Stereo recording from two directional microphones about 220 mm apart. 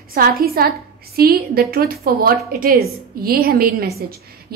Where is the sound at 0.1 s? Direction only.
40° right (ahead or behind).